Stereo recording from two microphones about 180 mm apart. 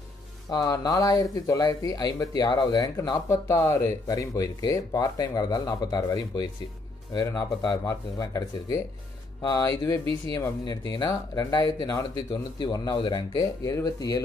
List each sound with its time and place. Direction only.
0.5 s speech: 20° left (ahead or behind)